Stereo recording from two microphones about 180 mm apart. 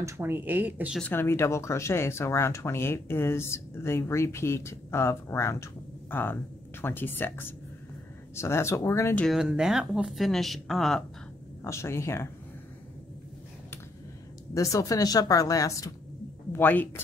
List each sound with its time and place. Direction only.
0.0 s speech: 10° right (ahead or behind)
1.0 s speech: 15° left (ahead or behind)
9.2 s speech: centre (ahead or behind)
11.6 s speech: 15° left (ahead or behind)
14.5 s a woman's voice: 20° left (ahead or behind)